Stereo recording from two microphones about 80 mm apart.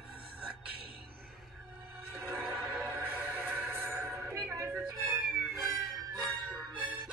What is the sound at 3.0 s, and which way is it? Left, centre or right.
Music, right.